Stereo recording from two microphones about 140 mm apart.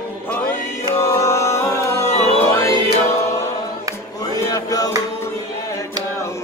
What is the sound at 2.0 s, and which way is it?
Music, 50° left (ahead or behind).